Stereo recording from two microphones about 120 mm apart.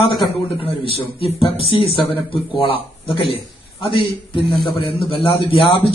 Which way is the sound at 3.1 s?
50° left (ahead or behind).